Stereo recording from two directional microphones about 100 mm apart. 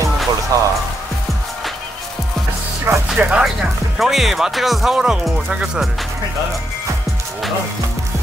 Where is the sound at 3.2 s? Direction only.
15° right (ahead or behind).